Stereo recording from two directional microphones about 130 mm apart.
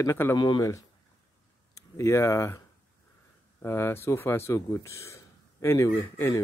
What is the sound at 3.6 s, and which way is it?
Speech, 20° left (ahead or behind).